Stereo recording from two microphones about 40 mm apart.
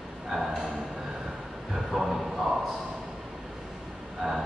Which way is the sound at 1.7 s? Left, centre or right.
Centre.